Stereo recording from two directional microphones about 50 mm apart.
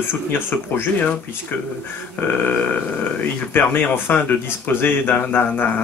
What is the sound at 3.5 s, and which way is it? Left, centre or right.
Speech, left.